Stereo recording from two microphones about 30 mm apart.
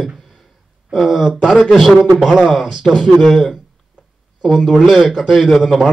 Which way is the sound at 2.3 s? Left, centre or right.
Centre.